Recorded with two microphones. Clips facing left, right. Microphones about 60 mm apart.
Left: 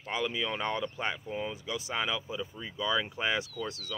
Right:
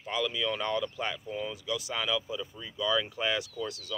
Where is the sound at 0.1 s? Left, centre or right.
Left.